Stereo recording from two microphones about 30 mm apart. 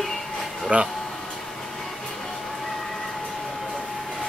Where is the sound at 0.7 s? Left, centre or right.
Right.